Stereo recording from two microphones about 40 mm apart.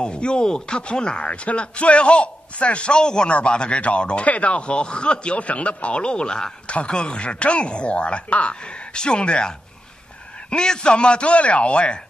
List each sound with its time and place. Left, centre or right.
0.0 s speech: left
8.5 s speech: left
10.5 s speech: centre